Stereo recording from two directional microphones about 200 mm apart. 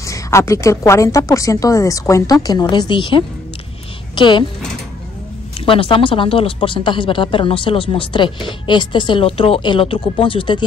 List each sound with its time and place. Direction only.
0.0 s a woman's voice: 15° left (ahead or behind)
5.7 s speech: 25° left (ahead or behind)